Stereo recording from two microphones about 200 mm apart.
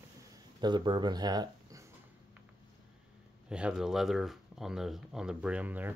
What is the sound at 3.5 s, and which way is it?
Speech, 5° right (ahead or behind).